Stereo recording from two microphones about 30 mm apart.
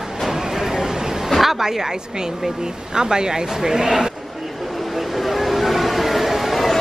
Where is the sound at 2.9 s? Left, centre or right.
Right.